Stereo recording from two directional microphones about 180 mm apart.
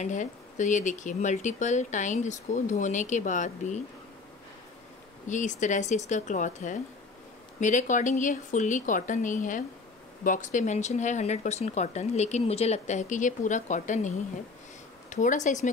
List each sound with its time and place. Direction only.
0.0 s speech: 45° left (ahead or behind)
5.3 s speech: 45° left (ahead or behind)